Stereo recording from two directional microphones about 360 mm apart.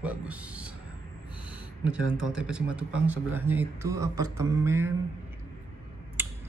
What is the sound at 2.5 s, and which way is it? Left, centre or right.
Speech, centre.